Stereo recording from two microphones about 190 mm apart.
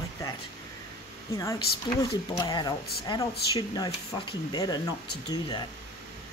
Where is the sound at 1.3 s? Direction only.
20° left (ahead or behind).